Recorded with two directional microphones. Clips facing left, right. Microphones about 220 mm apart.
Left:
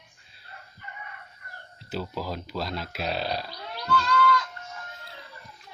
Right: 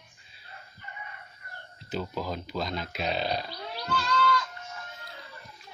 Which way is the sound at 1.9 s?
5° left (ahead or behind).